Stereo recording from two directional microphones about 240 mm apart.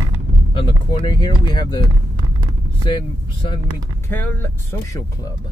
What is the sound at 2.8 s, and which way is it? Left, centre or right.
Speech, centre.